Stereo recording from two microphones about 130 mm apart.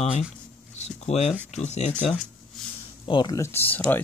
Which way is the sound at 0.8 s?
55° left (ahead or behind).